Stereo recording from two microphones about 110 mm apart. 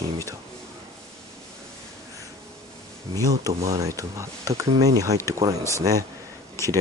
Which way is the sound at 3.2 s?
30° right (ahead or behind).